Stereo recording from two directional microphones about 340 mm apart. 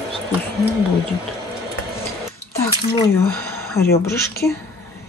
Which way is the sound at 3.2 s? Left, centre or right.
Centre.